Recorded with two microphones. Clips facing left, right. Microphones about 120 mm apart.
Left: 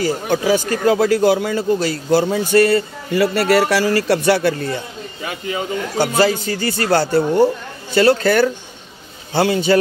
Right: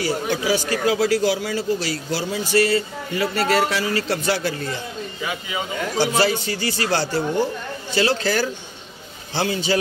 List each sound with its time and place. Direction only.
0.0 s a man's voice: 50° left (ahead or behind)